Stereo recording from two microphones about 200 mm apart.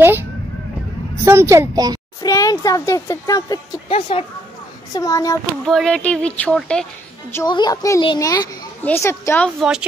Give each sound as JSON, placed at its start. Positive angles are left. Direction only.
{"t": 1.2, "sound": "a woman's voice", "side_deg": -15}
{"t": 2.2, "sound": "speech", "side_deg": 15}
{"t": 3.9, "sound": "a woman's voice", "side_deg": 30}
{"t": 4.9, "sound": "speech", "side_deg": 15}
{"t": 5.7, "sound": "speech", "side_deg": 0}
{"t": 7.3, "sound": "speech", "side_deg": 20}
{"t": 9.6, "sound": "speech", "side_deg": -5}